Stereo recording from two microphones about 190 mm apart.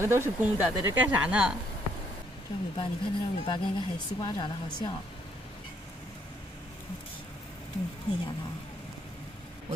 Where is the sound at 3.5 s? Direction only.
25° left (ahead or behind).